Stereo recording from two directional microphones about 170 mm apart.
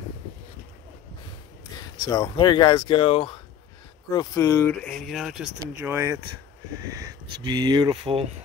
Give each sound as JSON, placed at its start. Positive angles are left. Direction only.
{"t": 1.8, "sound": "speech", "side_deg": 20}
{"t": 4.1, "sound": "speech", "side_deg": 20}
{"t": 5.8, "sound": "speech", "side_deg": -15}